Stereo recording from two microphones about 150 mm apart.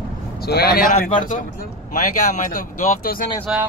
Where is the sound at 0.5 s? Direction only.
90° left.